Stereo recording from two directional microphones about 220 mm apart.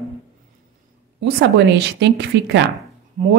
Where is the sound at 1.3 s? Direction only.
50° right (ahead or behind).